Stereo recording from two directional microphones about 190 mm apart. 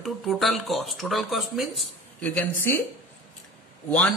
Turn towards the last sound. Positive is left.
turn(degrees=5)  # may be behind; listen again after turning